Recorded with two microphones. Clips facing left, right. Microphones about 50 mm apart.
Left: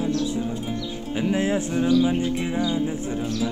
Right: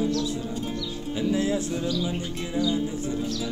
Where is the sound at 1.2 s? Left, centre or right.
Left.